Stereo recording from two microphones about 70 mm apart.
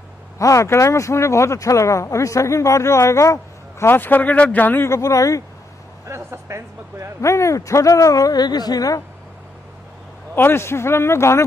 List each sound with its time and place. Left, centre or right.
0.4 s speech: left
3.8 s speech: left
4.8 s speech: left
6.0 s speech: right
7.2 s speech: left
10.3 s speech: left